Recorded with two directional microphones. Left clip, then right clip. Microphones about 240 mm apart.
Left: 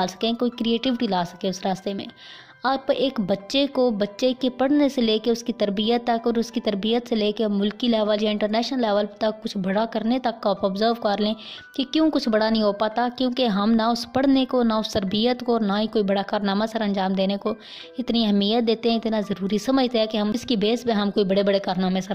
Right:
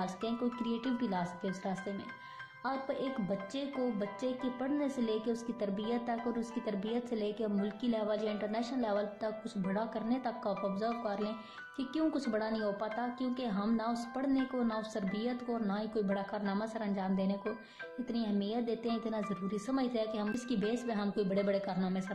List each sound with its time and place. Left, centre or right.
0.0 s a woman's voice: left